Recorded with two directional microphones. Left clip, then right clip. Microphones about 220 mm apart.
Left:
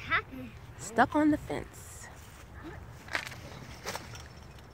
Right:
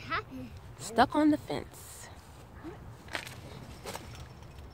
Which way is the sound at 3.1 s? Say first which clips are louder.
Left 4 dB; 5° left (ahead or behind).